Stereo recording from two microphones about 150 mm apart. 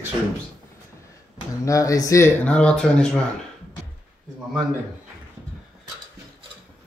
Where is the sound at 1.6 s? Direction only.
20° left (ahead or behind).